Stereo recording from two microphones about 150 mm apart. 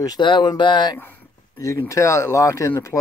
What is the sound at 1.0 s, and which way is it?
Speech, 15° left (ahead or behind).